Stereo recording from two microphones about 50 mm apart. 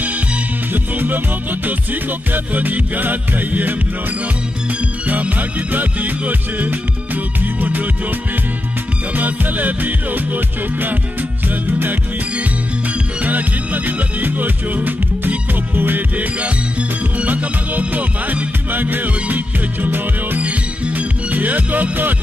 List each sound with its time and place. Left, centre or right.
0.7 s music: right
5.0 s music: right
9.1 s music: right
13.2 s music: right
20.4 s music: right